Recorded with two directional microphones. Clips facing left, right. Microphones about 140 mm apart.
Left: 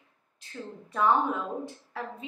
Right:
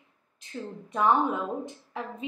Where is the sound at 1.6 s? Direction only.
20° right (ahead or behind).